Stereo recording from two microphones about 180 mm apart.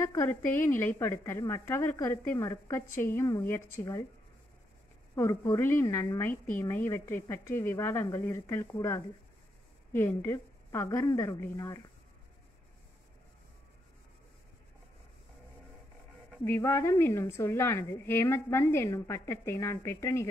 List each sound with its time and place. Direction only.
0.0 s a woman's voice: 15° left (ahead or behind)
5.1 s a woman's voice: 15° left (ahead or behind)
16.4 s a woman's voice: 15° left (ahead or behind)